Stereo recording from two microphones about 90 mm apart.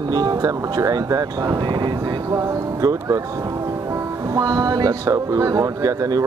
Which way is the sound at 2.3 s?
40° right (ahead or behind).